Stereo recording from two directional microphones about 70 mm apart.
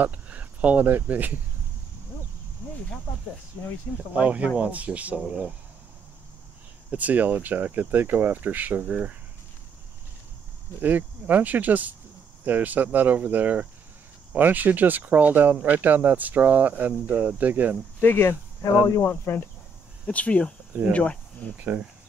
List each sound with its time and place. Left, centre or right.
0.0 s speech: right
4.1 s speech: centre
6.9 s speech: right
8.8 s speech: centre
10.8 s speech: right
18.0 s speech: left
20.1 s speech: centre
21.5 s speech: right